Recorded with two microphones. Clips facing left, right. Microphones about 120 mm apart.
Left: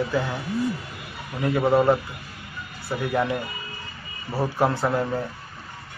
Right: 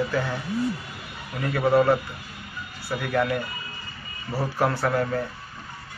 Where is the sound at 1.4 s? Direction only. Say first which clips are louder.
Left 1 dB; 20° left (ahead or behind).